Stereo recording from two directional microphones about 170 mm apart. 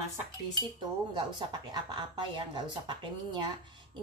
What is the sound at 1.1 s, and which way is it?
Speech, 25° right (ahead or behind).